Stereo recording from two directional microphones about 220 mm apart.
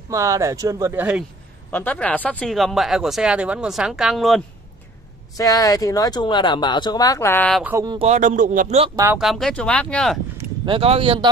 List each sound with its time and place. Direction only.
0.1 s speech: 15° right (ahead or behind)
1.7 s speech: 10° left (ahead or behind)
5.4 s speech: 15° left (ahead or behind)
7.6 s speech: 15° right (ahead or behind)
8.1 s a man's voice: 35° right (ahead or behind)
8.9 s speech: 10° right (ahead or behind)
9.2 s speech: centre (ahead or behind)
10.3 s speech: 20° right (ahead or behind)